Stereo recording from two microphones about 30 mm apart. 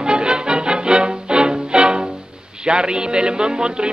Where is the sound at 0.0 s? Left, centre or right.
Right.